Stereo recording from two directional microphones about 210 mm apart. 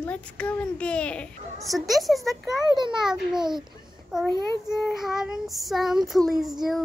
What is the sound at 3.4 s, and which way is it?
Speech, 20° right (ahead or behind).